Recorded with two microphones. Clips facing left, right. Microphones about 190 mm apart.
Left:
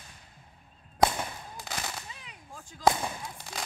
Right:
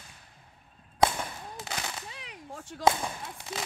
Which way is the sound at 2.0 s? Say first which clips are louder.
Right 5 dB; 70° right (ahead or behind).